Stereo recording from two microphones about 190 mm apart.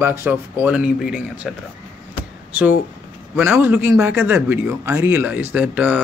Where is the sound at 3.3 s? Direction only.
10° right (ahead or behind).